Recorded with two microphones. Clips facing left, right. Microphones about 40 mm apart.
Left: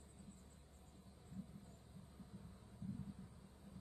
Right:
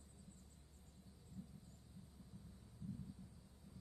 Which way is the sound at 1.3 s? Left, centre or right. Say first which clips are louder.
Left 3 dB; left.